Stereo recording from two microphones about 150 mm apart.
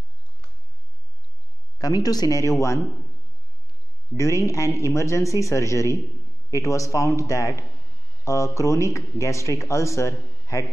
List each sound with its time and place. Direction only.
1.8 s speech: 25° left (ahead or behind)
4.2 s speech: 20° left (ahead or behind)